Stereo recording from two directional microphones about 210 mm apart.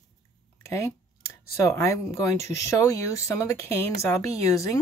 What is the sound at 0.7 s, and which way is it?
Speech, 15° left (ahead or behind).